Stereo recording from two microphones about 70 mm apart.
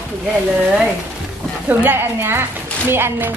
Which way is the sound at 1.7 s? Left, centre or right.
Right.